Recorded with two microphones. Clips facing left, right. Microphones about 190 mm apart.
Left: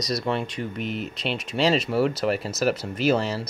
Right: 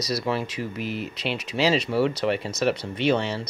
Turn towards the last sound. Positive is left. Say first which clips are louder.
# left 1 dB
turn(degrees=0)  # may be behind; listen again after turning